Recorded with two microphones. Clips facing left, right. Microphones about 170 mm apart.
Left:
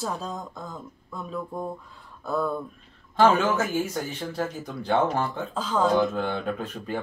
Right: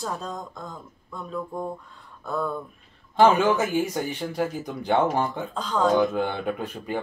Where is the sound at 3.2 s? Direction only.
20° right (ahead or behind).